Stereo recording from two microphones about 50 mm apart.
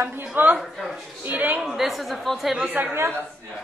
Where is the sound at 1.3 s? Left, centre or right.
Right.